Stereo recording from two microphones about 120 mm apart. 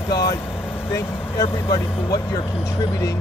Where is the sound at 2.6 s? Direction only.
25° left (ahead or behind).